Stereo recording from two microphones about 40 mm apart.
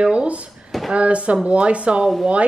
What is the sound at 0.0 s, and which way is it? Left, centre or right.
Speech, right.